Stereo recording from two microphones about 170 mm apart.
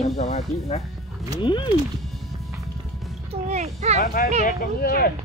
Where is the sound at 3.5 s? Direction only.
40° right (ahead or behind).